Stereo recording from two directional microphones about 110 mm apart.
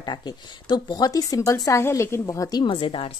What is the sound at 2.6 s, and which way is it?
Speech, 50° left (ahead or behind).